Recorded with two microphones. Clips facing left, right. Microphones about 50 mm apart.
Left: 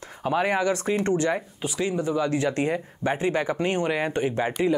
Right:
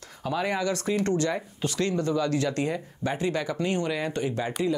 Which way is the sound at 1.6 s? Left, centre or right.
Centre.